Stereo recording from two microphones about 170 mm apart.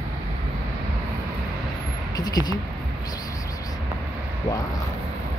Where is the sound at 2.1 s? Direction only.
25° left (ahead or behind).